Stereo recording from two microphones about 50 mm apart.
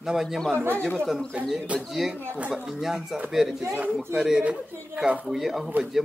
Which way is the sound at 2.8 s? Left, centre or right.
Centre.